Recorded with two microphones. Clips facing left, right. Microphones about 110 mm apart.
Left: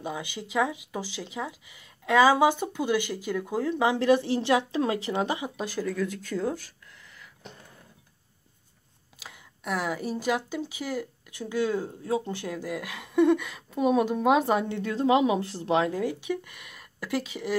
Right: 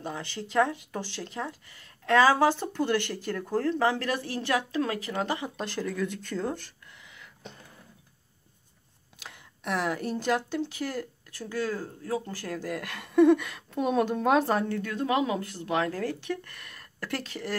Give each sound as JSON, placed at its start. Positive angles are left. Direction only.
{"t": 0.0, "sound": "speech", "side_deg": 10}
{"t": 9.2, "sound": "speech", "side_deg": 5}
{"t": 12.5, "sound": "a woman's voice", "side_deg": 5}
{"t": 14.4, "sound": "a woman's voice", "side_deg": 15}